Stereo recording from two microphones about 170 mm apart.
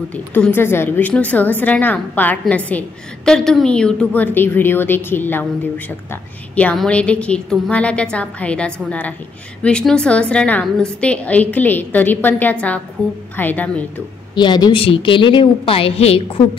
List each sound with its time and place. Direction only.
0.1 s a woman's voice: 10° left (ahead or behind)
6.5 s a woman's voice: 10° left (ahead or behind)
14.3 s a woman's voice: 25° left (ahead or behind)